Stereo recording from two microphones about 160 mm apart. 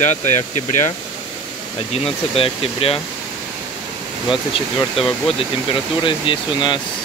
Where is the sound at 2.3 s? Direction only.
35° left (ahead or behind).